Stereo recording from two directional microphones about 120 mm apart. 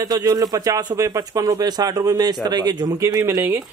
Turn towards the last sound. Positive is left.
turn(degrees=-30)  # may be behind; listen again after turning